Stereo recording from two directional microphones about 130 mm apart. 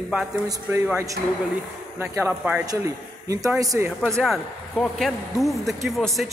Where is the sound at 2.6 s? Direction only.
25° right (ahead or behind).